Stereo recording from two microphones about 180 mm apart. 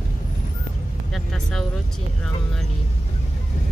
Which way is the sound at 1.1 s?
Centre (ahead or behind).